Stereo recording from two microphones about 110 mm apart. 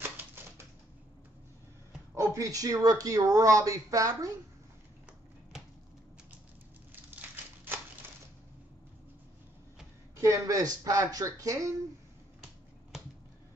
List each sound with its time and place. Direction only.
2.1 s speech: 30° right (ahead or behind)
6.9 s crumpling: 15° right (ahead or behind)
10.1 s speech: 30° right (ahead or behind)